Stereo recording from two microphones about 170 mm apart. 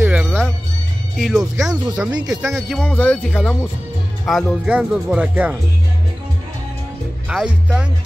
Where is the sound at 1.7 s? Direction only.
20° right (ahead or behind).